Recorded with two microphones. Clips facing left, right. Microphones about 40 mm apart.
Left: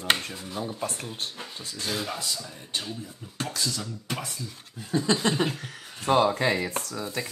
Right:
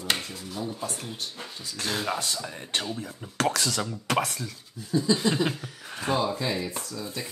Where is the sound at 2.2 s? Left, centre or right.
Right.